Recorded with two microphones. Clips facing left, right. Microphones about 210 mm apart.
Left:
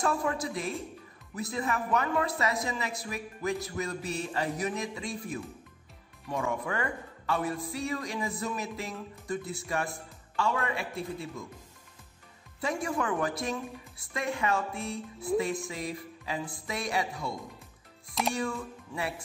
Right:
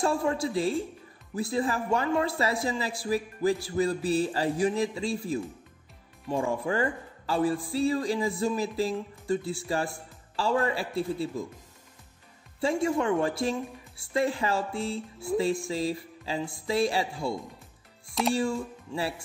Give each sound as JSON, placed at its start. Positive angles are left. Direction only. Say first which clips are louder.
{"t": 0.0, "sound": "a man's voice", "louder": "right 3 dB", "side_deg": -30}
{"t": 12.5, "sound": "a man's voice", "louder": "right 5 dB", "side_deg": -25}